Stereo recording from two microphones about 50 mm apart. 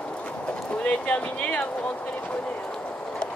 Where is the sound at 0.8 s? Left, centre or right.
Left.